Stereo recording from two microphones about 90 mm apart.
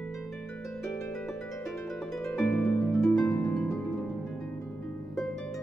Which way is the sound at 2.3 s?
10° left (ahead or behind).